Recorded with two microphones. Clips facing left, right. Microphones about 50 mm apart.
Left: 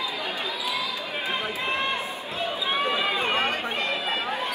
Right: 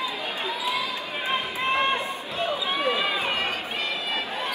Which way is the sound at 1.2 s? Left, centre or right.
Right.